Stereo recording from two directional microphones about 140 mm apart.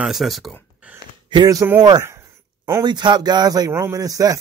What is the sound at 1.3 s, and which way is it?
Speech, 30° right (ahead or behind).